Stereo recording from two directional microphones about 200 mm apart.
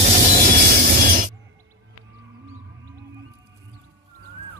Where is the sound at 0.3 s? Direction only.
50° right (ahead or behind).